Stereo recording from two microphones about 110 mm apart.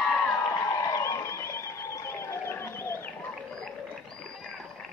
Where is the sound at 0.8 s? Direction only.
30° left (ahead or behind).